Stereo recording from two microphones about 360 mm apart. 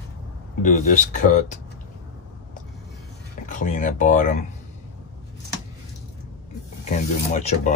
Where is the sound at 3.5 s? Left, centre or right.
Left.